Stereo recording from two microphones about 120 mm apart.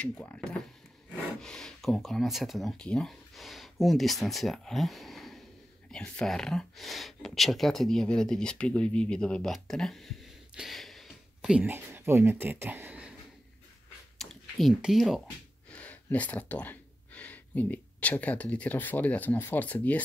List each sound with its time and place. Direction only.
0.0 s speech: 10° left (ahead or behind); by 11.7 s 5° right (ahead or behind)
11.7 s speech: 20° right (ahead or behind)
14.1 s speech: centre (ahead or behind)
15.2 s speech: 10° left (ahead or behind)